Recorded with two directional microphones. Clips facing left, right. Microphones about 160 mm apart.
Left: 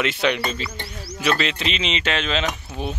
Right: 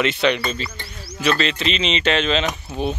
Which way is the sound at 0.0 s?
10° left (ahead or behind).